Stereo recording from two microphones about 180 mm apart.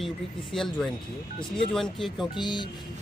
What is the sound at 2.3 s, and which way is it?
Speech, 25° left (ahead or behind).